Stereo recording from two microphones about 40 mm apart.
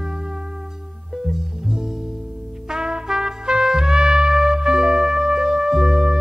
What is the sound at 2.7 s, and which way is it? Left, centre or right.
Trumpet, centre.